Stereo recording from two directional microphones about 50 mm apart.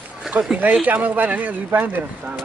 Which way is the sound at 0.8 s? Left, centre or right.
Right.